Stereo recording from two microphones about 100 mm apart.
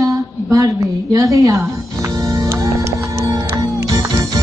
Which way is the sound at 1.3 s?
35° right (ahead or behind).